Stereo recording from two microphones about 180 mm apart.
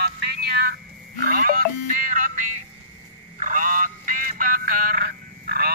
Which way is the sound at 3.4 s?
45° right (ahead or behind).